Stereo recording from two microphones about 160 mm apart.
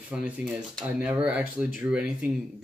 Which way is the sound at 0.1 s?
5° right (ahead or behind).